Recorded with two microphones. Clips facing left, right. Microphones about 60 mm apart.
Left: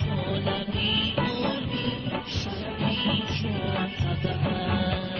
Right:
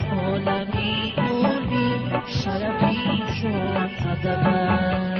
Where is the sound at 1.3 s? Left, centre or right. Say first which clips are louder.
Right 7 dB; right.